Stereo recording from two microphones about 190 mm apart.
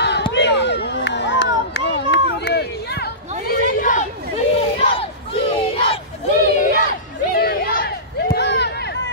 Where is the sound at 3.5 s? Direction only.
45° left (ahead or behind).